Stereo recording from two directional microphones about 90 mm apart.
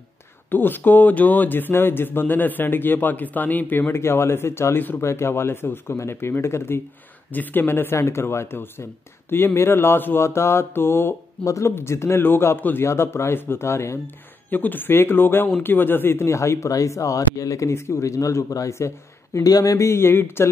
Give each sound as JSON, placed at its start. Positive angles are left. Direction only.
{"t": 0.5, "sound": "speech", "side_deg": 20}